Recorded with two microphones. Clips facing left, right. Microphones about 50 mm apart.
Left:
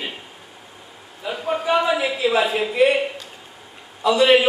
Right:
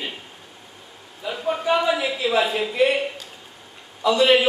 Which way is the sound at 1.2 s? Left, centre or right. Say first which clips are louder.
Left 1 dB; centre.